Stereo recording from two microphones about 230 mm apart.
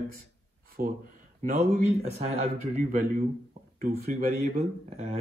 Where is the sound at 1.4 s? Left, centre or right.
Right.